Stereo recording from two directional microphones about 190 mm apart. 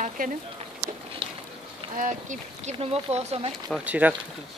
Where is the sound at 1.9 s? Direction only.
40° right (ahead or behind).